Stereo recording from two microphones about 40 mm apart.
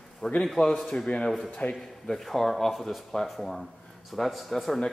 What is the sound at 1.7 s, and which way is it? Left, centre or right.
Speech, centre.